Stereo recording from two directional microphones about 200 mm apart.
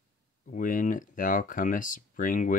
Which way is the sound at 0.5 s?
40° left (ahead or behind).